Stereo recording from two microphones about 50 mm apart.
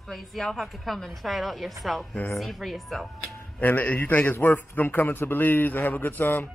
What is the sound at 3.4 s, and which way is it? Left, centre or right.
A man's voice, left.